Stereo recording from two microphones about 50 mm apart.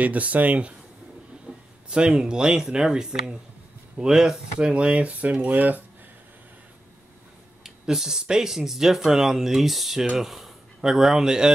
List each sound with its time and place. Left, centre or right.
0.0 s speech: right
1.5 s a sound: centre
1.9 s speech: centre
4.6 s speech: right
7.6 s speech: centre